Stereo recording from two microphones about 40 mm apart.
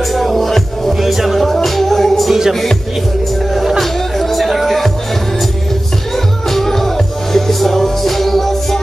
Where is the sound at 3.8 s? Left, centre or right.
Centre.